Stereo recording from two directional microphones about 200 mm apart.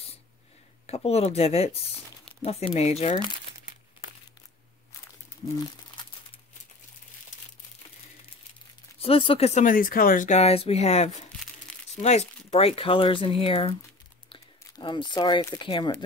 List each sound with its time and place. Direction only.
0.8 s speech: 30° left (ahead or behind)
5.4 s speech: 25° left (ahead or behind)
9.0 s speech: 25° left (ahead or behind)